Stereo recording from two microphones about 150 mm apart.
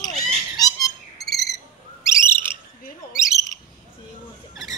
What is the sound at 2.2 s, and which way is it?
Bird, 15° left (ahead or behind).